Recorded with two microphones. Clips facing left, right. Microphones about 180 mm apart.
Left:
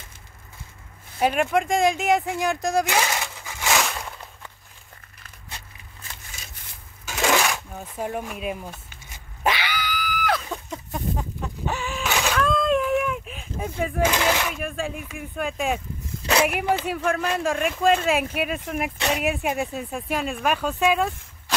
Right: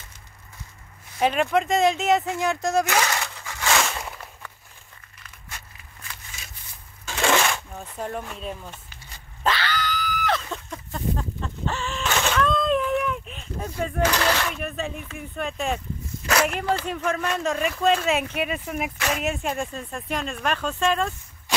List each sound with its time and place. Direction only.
1.2 s speech: 5° left (ahead or behind)
3.7 s a sound: centre (ahead or behind)
7.1 s shuffling cards: 5° left (ahead or behind)
9.4 s screaming: 15° left (ahead or behind)
10.7 s chicken: 15° left (ahead or behind)
12.2 s a sound: 5° left (ahead or behind)
14.5 s speech: 5° left (ahead or behind)